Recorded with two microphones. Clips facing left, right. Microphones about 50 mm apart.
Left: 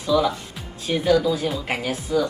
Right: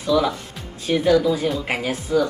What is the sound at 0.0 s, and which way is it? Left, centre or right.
Speech, centre.